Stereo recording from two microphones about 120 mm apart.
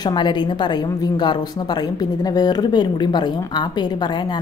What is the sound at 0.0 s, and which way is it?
A woman's voice, 40° left (ahead or behind).